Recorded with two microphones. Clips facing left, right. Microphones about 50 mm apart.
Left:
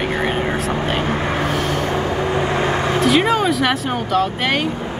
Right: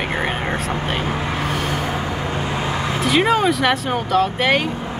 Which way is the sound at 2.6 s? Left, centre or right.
Left.